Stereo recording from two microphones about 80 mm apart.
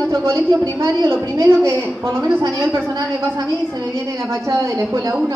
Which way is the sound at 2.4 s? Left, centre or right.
Right.